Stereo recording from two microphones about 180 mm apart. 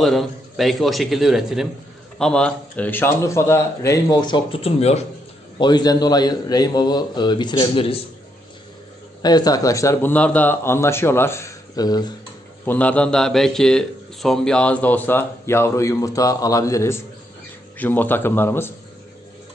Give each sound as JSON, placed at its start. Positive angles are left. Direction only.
{"t": 0.0, "sound": "a man's voice", "side_deg": 0}
{"t": 5.6, "sound": "a man's voice", "side_deg": 25}
{"t": 9.2, "sound": "a man's voice", "side_deg": 20}
{"t": 12.6, "sound": "a man's voice", "side_deg": 10}